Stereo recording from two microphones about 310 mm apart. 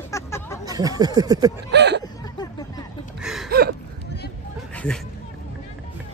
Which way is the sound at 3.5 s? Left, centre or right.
Right.